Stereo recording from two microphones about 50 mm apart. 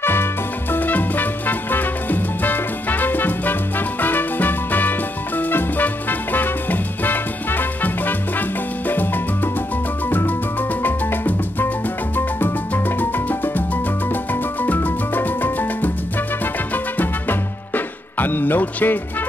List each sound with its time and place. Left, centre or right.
0.0 s music: left